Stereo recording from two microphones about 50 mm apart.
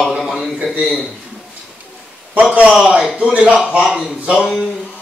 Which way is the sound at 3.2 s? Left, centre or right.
Right.